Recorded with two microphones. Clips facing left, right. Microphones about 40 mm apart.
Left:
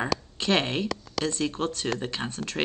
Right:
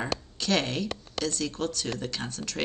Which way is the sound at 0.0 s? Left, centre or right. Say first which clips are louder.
Left 3 dB; left.